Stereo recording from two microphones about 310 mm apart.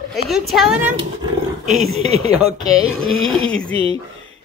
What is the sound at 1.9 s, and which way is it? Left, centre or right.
Speech, centre.